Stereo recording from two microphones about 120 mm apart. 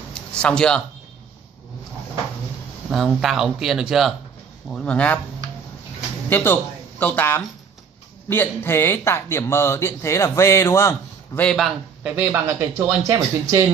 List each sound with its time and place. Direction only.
0.1 s a sound: 5° left (ahead or behind)
2.9 s speech: 5° right (ahead or behind)
4.6 s a man's voice: 10° left (ahead or behind)
6.2 s a man's voice: 15° left (ahead or behind)
11.4 s speech: centre (ahead or behind)
12.0 s speech: 20° right (ahead or behind)